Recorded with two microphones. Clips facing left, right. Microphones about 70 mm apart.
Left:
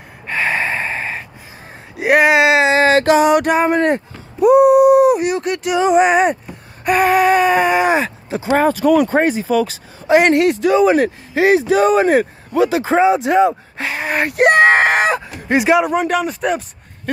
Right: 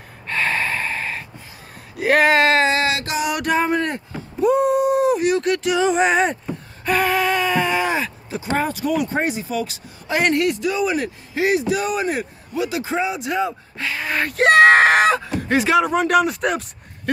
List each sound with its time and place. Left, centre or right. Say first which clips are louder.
0.3 s gasp: left 3 dB; centre
2.0 s a sound: left 3 dB; centre
2.8 s a sound: left 10 dB; left
3.3 s speech: left 6 dB; left
4.4 s a sound: left 8 dB; centre
8.5 s speech: left 8 dB; left
10.0 s speech: left 7 dB; left
13.0 s speech: left 12 dB; left
14.5 s speech: right 2 dB; centre
15.4 s speech: left 4 dB; centre